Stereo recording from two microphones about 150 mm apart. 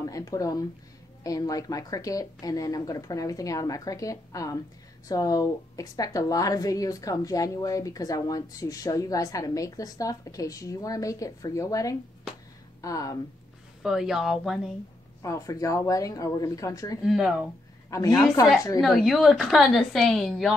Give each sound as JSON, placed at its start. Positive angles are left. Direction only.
{"t": 0.0, "sound": "speech", "side_deg": 25}
{"t": 13.8, "sound": "a woman's voice", "side_deg": -5}
{"t": 15.2, "sound": "speech", "side_deg": 20}
{"t": 17.1, "sound": "a woman's voice", "side_deg": 0}
{"t": 17.8, "sound": "speech", "side_deg": 20}
{"t": 18.8, "sound": "a woman's voice", "side_deg": 0}